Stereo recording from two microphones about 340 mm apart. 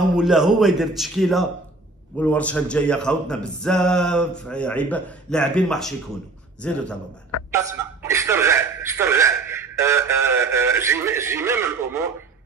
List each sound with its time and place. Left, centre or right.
0.1 s a man's voice: centre
7.5 s speech: centre